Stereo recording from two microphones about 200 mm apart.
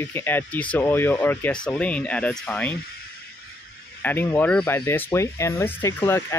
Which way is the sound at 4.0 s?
10° left (ahead or behind).